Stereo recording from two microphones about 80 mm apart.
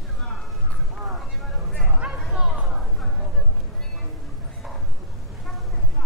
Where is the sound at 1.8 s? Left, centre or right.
Centre.